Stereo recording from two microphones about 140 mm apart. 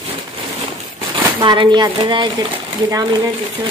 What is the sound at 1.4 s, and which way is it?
Speech, 35° right (ahead or behind).